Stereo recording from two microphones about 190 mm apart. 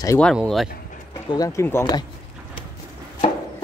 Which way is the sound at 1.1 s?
20° left (ahead or behind).